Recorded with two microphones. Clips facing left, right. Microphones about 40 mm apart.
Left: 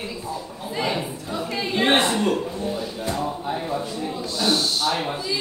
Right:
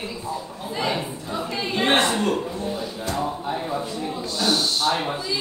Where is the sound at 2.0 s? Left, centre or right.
Centre.